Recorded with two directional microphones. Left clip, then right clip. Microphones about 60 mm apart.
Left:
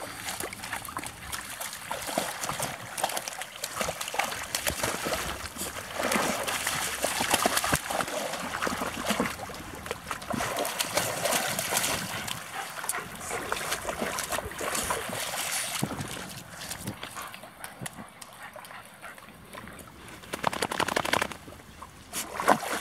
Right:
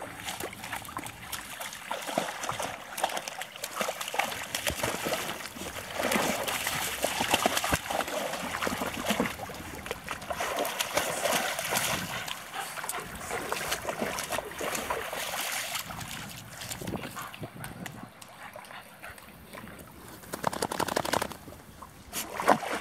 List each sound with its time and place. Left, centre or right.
0.2 s trickle: centre
3.3 s water: centre
5.7 s a sound: centre
8.4 s boat: centre
13.4 s boat: centre
15.5 s boat: centre
20.4 s a sound: right
22.1 s boat: centre